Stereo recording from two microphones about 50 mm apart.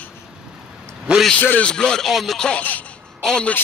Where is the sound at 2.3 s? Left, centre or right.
Centre.